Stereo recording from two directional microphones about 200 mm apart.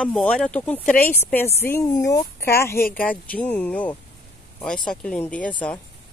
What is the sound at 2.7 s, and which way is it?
Speech, 45° left (ahead or behind).